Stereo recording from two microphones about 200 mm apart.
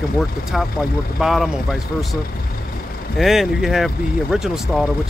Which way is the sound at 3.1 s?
Centre (ahead or behind).